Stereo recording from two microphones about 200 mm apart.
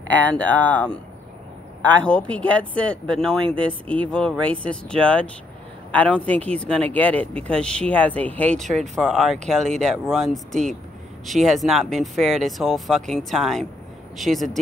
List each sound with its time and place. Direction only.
0.1 s speech: 10° left (ahead or behind)
3.4 s speech: 25° right (ahead or behind)
3.8 s speech: 5° left (ahead or behind)